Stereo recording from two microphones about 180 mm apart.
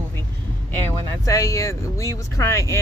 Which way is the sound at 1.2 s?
15° left (ahead or behind).